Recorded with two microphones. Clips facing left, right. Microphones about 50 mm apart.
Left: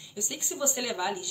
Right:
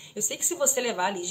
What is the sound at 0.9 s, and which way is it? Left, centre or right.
Speech, right.